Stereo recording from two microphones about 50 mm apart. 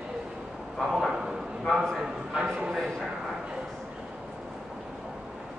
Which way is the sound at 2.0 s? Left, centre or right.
Centre.